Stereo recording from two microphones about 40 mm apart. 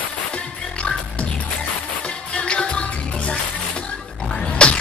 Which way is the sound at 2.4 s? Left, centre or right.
Left.